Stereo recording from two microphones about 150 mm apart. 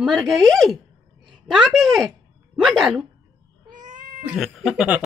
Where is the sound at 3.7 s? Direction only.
60° right (ahead or behind).